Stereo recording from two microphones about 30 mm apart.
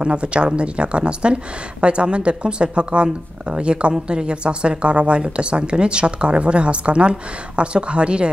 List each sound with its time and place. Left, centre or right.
0.0 s speech: right